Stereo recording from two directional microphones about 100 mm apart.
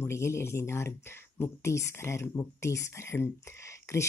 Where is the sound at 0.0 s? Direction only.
25° left (ahead or behind).